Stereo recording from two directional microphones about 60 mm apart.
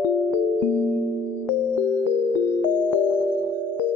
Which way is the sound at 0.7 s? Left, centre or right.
Left.